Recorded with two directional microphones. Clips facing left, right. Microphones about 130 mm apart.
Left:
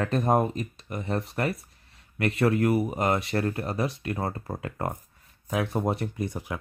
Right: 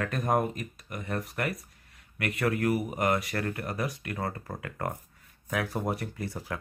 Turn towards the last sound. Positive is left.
turn(degrees=20)  # may be behind; listen again after turning